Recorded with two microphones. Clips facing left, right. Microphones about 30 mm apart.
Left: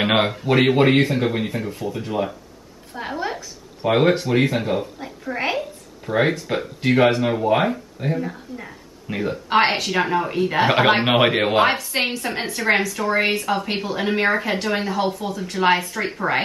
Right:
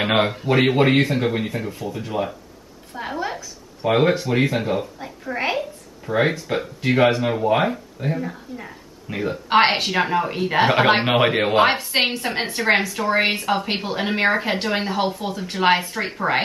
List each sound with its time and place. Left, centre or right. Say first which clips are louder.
0.0 s a woman's voice: even; centre
9.5 s a woman's voice: right 2 dB; centre
9.9 s a woman's voice: even; centre
11.1 s speech: left 1 dB; centre
11.6 s a woman's voice: right 1 dB; centre